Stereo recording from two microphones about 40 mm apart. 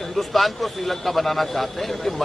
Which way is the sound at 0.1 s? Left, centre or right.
Centre.